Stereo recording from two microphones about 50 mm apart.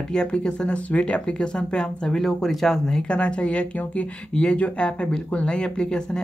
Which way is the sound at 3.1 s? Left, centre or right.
Left.